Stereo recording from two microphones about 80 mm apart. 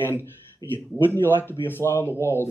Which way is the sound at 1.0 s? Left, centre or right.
Left.